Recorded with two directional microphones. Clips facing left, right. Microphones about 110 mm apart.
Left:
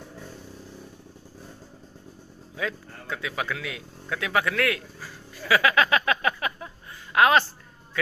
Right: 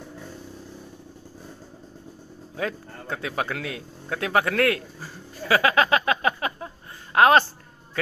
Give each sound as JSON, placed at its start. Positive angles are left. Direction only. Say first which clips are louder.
{"t": 2.5, "sound": "speech", "louder": "right 2 dB", "side_deg": -40}